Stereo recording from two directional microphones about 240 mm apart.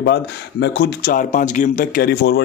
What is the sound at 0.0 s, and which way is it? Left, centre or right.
Speech, left.